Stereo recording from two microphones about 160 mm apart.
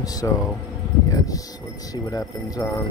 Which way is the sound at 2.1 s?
20° left (ahead or behind).